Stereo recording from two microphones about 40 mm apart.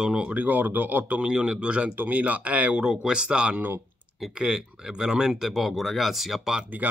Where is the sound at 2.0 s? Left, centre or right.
Right.